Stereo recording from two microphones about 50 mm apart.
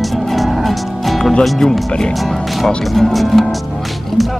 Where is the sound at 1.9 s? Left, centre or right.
Centre.